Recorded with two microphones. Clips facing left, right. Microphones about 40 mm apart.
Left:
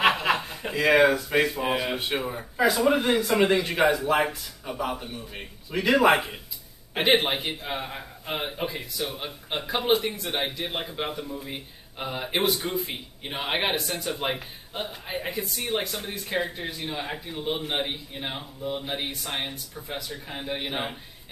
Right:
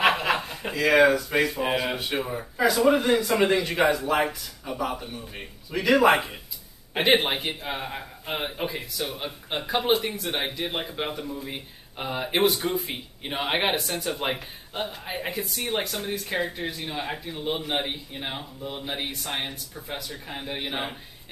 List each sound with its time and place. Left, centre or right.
0.2 s chuckle: centre
0.8 s speech: centre
1.5 s speech: centre
2.0 s speech: centre
2.2 s speech: centre
5.7 s speech: centre